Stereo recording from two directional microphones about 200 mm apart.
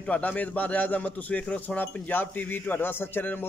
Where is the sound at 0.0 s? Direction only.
5° left (ahead or behind).